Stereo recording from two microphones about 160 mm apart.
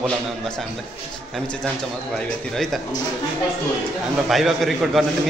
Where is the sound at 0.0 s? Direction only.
5° left (ahead or behind).